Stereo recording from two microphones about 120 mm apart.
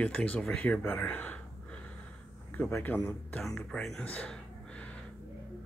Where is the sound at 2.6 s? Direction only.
15° left (ahead or behind).